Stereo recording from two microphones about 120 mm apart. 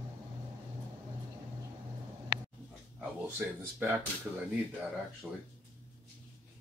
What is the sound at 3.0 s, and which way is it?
Speech, 5° right (ahead or behind).